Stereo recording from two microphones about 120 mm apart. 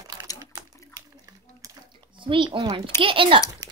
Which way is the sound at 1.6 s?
25° right (ahead or behind).